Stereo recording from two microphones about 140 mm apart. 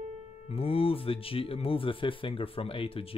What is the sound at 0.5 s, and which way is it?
Speech, 40° left (ahead or behind).